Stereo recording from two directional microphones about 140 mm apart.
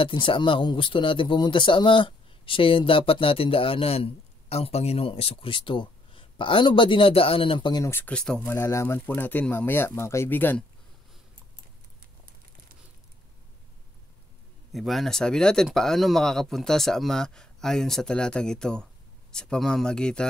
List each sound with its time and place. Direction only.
0.0 s speech: 40° left (ahead or behind)
7.8 s speech: 15° left (ahead or behind)
8.5 s speech: 20° left (ahead or behind)
14.7 s speech: centre (ahead or behind)